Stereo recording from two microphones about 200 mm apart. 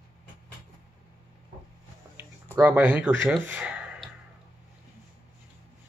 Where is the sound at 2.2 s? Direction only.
10° right (ahead or behind).